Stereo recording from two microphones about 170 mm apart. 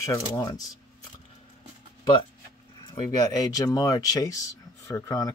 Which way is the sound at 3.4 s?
20° left (ahead or behind).